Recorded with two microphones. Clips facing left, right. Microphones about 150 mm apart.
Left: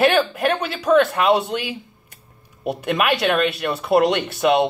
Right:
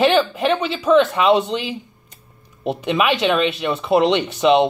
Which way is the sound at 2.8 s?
55° left (ahead or behind).